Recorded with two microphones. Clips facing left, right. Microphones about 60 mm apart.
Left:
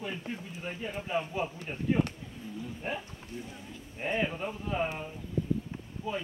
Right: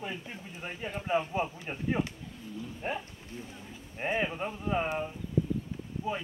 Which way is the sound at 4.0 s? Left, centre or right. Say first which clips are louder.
Even; centre.